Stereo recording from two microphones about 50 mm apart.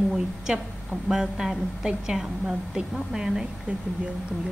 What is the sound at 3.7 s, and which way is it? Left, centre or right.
Speech, right.